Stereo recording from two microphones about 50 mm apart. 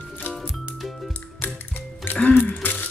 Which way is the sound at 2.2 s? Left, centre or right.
Left.